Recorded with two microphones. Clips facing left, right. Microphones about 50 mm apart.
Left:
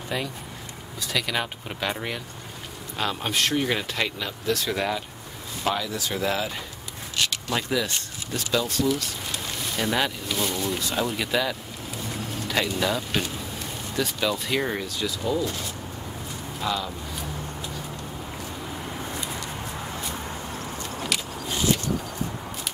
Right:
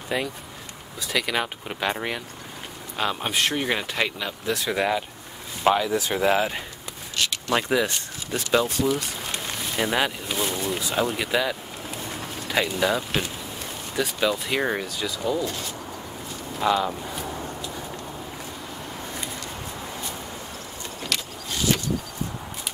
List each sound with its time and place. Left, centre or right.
0.1 s speech: centre; by 6.6 s right
7.2 s a sound: centre
7.5 s speech: right
10.7 s speech: centre
16.6 s speech: right
21.1 s vehicle: centre